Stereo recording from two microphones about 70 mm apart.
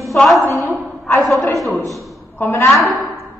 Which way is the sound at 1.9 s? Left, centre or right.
Centre.